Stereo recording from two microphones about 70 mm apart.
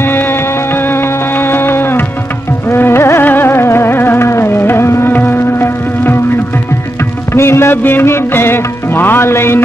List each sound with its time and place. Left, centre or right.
1.4 s music: left
7.3 s music: left